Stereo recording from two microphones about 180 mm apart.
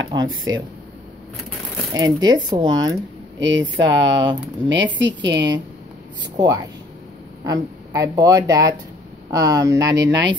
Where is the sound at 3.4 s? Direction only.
90° right.